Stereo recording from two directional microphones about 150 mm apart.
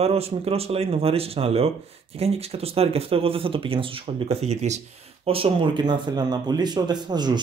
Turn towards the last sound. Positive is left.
turn(degrees=-30)  # may be behind; listen again after turning